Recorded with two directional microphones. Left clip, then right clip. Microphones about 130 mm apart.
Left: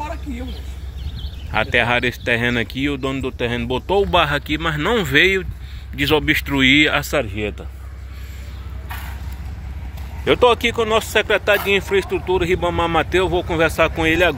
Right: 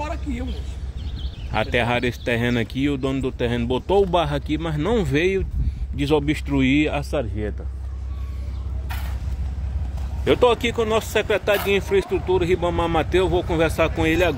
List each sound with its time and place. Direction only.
1.6 s speech: 15° right (ahead or behind)
7.1 s speech: 85° left
10.2 s speech: 10° right (ahead or behind)